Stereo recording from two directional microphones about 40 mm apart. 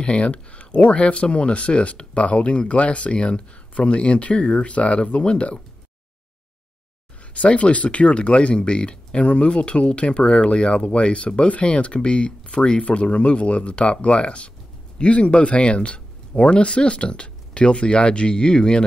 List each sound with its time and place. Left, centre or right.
0.0 s speech: left
7.3 s speech: left